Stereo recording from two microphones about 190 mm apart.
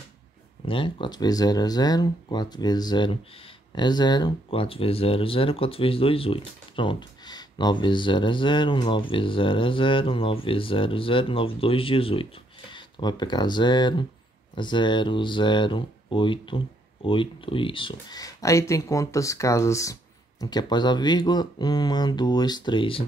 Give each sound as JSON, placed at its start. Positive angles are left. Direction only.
{"t": 0.7, "sound": "speech", "side_deg": 25}